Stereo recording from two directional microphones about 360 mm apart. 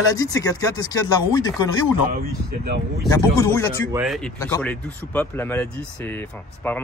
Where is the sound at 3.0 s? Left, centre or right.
Centre.